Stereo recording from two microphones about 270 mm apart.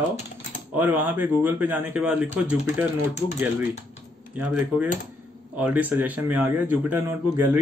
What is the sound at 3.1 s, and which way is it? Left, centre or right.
Speech, left.